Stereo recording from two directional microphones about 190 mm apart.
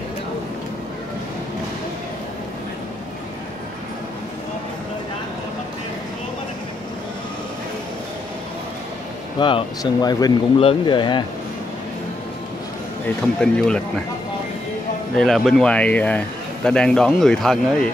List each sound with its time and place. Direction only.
9.4 s speech: 25° left (ahead or behind)
13.0 s speech: 5° left (ahead or behind)
15.1 s speech: centre (ahead or behind)